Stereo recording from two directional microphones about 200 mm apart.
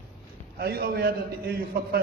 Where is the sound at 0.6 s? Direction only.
50° right (ahead or behind).